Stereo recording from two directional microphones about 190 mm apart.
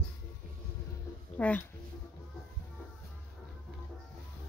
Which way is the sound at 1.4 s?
5° left (ahead or behind).